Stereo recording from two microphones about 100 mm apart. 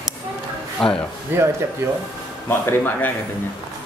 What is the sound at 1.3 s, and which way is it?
Speech, 20° right (ahead or behind).